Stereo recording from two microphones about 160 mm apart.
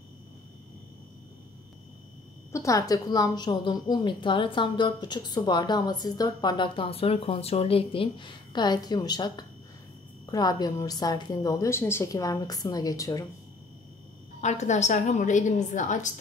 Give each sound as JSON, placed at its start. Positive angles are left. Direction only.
{"t": 2.5, "sound": "a woman's voice", "side_deg": 20}
{"t": 14.4, "sound": "a woman's voice", "side_deg": 45}